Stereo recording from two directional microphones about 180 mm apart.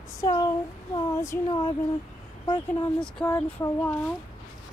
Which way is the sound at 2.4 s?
25° left (ahead or behind).